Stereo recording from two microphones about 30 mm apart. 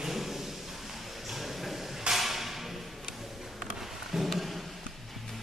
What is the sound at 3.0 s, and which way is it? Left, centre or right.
Tick-tock, centre.